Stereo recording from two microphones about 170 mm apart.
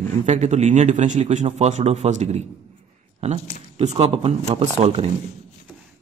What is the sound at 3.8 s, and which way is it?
A man's voice, 40° right (ahead or behind).